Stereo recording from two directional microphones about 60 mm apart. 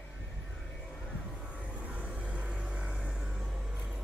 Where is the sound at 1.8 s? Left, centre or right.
Right.